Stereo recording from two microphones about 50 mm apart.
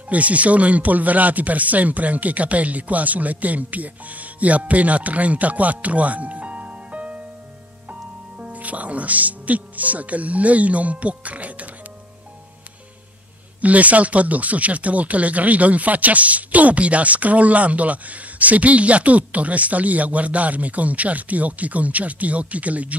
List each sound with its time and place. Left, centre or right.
0.1 s speech: right
13.6 s speech: right